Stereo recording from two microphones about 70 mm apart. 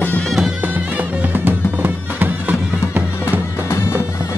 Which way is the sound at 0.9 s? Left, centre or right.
Right.